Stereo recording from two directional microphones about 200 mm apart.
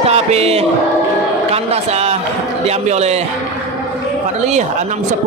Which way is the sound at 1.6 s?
30° right (ahead or behind).